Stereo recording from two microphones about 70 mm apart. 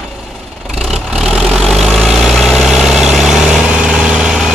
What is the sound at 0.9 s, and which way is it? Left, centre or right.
Vehicle, centre.